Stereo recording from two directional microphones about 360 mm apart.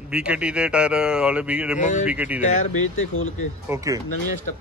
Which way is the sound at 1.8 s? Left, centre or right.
Centre.